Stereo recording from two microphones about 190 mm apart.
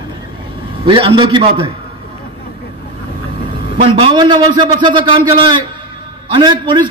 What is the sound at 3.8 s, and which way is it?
A man's voice, 25° right (ahead or behind).